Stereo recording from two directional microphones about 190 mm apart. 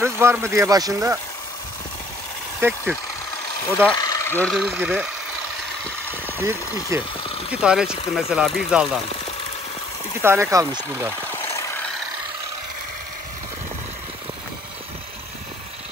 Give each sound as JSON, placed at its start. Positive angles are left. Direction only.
{"t": 0.0, "sound": "speech", "side_deg": -15}
{"t": 2.6, "sound": "speech", "side_deg": -10}
{"t": 3.9, "sound": "speech", "side_deg": 15}
{"t": 6.3, "sound": "speech", "side_deg": -10}
{"t": 7.2, "sound": "a sound", "side_deg": 35}
{"t": 7.6, "sound": "speech", "side_deg": -5}
{"t": 10.2, "sound": "speech", "side_deg": -15}
{"t": 11.3, "sound": "vehicle", "side_deg": 15}